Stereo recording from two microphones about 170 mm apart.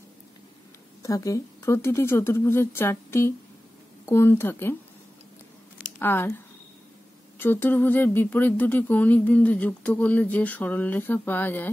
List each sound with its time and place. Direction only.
1.0 s speech: 20° left (ahead or behind)
5.9 s speech: 15° left (ahead or behind)
7.3 s speech: 10° left (ahead or behind)